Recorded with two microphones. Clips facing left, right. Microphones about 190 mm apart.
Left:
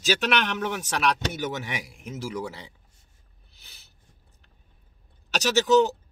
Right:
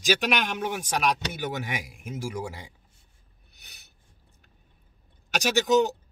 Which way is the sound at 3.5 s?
15° right (ahead or behind).